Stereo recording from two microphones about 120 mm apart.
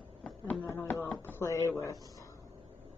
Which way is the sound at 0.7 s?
20° left (ahead or behind).